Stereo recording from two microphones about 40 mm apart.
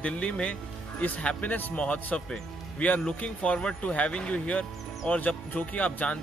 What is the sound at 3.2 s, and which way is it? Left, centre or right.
A man's voice, left.